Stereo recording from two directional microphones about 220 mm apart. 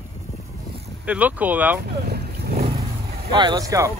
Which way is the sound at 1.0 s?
5° right (ahead or behind).